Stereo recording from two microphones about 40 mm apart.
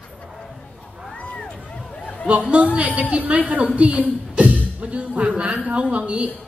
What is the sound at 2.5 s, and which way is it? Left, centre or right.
A woman's voice, right.